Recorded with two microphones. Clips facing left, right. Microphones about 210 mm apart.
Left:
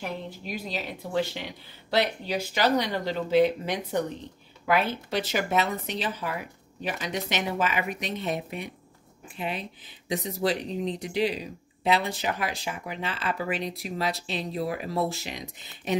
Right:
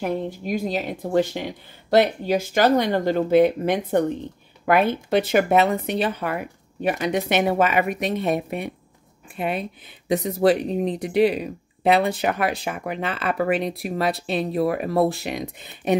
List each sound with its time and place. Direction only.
0.0 s speech: 50° right (ahead or behind)